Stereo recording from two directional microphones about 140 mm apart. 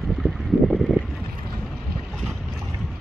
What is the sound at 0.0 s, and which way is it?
Boat, centre (ahead or behind).